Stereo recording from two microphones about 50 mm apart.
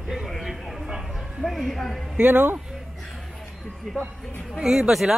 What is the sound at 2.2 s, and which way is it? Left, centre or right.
Speech, right.